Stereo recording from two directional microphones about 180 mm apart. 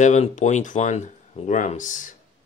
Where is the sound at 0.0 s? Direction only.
40° left (ahead or behind).